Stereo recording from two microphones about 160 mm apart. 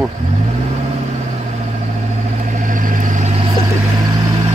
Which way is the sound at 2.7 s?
55° right (ahead or behind).